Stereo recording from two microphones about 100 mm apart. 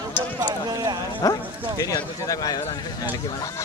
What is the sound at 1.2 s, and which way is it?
Speech, 35° left (ahead or behind).